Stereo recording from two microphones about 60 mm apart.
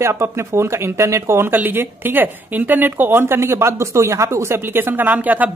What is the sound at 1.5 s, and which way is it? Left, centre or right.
Speech, right.